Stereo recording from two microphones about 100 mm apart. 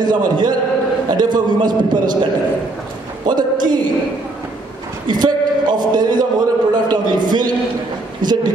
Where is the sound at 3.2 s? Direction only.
45° right (ahead or behind).